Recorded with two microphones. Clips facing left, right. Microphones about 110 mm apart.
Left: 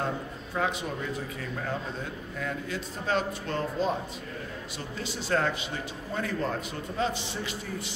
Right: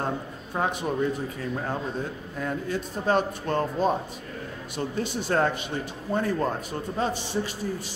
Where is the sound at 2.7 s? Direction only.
45° right (ahead or behind).